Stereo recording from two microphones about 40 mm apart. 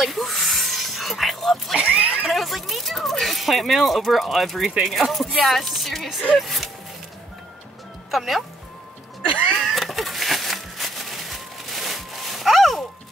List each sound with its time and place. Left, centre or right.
0.0 s a sound: centre
1.8 s speech: right
2.2 s speech: centre
8.1 s speech: centre
9.5 s cat: centre